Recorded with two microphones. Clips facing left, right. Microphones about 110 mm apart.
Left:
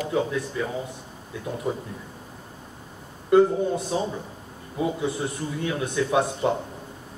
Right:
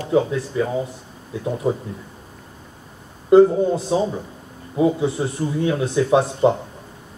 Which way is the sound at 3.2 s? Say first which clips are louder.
Right 6 dB; 25° right (ahead or behind).